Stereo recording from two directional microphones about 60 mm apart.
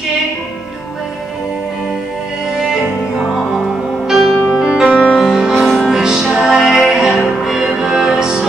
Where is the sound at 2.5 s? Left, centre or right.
Centre.